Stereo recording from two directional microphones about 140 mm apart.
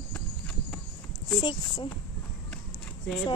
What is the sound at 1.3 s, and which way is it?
Speech, 30° left (ahead or behind).